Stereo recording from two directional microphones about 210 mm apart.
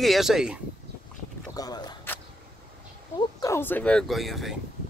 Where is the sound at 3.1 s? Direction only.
15° left (ahead or behind).